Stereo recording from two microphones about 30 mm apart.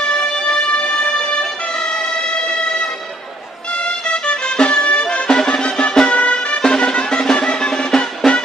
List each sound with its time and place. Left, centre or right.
0.5 s music: left
4.1 s music: left
5.3 s music: left
6.6 s music: left
8.2 s music: centre